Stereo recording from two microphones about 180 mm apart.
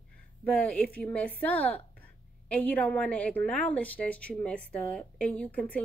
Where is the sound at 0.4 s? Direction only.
10° left (ahead or behind).